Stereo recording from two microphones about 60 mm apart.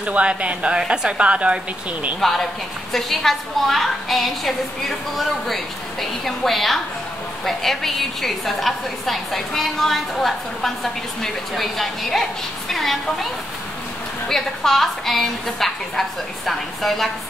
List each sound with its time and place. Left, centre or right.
0.0 s speech: centre
2.1 s a woman's voice: centre
14.3 s a woman's voice: centre